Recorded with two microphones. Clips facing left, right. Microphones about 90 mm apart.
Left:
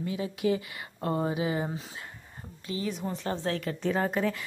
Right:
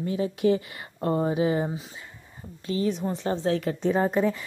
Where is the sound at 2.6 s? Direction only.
35° right (ahead or behind).